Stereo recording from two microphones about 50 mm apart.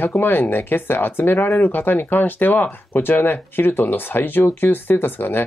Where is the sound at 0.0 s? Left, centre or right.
Left.